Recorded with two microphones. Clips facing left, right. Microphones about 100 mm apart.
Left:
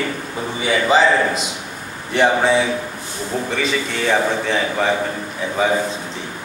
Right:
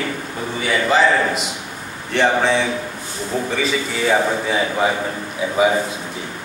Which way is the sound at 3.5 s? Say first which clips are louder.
Even; centre (ahead or behind).